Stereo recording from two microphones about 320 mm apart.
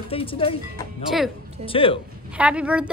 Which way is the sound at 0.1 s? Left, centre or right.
Centre.